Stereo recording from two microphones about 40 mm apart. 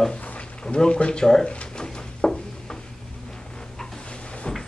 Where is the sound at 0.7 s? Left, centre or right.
Centre.